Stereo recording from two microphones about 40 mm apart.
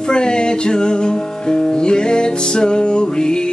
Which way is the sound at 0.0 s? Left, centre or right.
Left.